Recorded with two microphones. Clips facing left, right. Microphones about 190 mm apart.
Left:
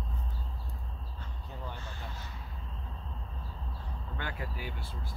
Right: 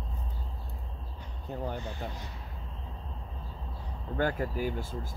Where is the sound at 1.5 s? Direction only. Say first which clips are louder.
Right 9 dB; 50° right (ahead or behind).